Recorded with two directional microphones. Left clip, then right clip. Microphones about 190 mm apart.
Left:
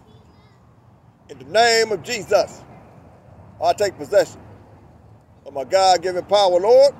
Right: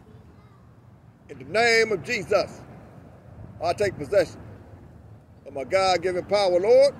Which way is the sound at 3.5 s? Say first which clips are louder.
Left 6 dB; 45° left (ahead or behind).